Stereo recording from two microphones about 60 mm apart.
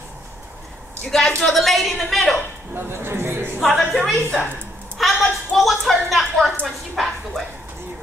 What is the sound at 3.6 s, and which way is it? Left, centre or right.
A man's voice, centre.